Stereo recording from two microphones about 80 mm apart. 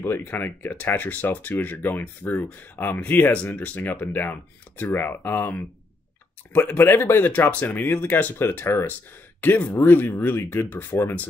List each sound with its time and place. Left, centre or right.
0.0 s speech: left